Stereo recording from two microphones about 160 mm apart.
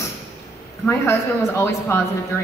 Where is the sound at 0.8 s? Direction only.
15° left (ahead or behind).